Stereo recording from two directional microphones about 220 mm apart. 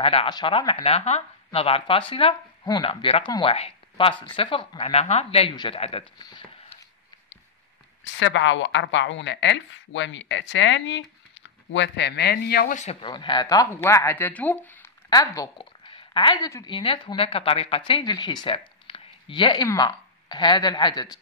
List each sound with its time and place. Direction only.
0.0 s speech: 25° left (ahead or behind)
8.0 s a woman's voice: 55° left (ahead or behind); by 12.9 s 35° left (ahead or behind)
13.0 s speech: 20° left (ahead or behind)